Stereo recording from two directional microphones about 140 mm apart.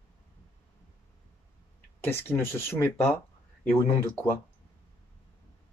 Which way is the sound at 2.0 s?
15° left (ahead or behind).